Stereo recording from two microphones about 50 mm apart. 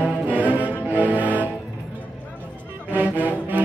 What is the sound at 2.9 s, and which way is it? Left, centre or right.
Music, right.